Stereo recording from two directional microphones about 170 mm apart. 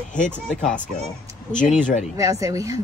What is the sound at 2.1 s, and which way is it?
Speech, 20° right (ahead or behind).